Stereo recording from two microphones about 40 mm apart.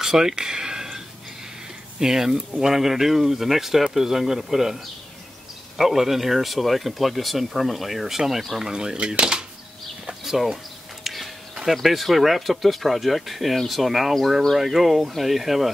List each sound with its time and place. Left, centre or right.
0.0 s a sound: centre
2.0 s speech: centre
8.5 s speech: centre
10.2 s speech: centre
11.1 s a sound: centre
11.7 s speech: centre